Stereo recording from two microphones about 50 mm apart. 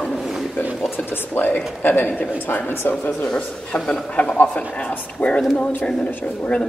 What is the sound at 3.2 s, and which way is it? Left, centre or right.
A man's voice, left.